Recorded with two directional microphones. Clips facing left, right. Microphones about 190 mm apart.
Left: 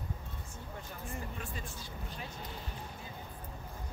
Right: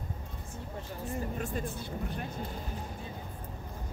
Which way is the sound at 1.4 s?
50° right (ahead or behind).